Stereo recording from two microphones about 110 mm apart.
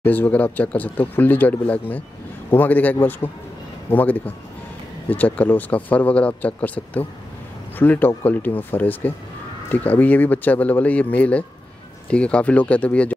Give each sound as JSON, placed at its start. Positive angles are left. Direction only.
{"t": 0.0, "sound": "speech", "side_deg": 15}